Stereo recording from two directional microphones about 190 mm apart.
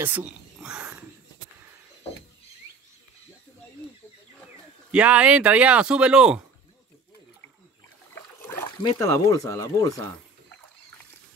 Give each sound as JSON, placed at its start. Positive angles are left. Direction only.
{"t": 0.0, "sound": "whispering", "side_deg": -10}
{"t": 4.9, "sound": "speech", "side_deg": -5}
{"t": 8.4, "sound": "a sound", "side_deg": 10}
{"t": 9.1, "sound": "speech", "side_deg": 15}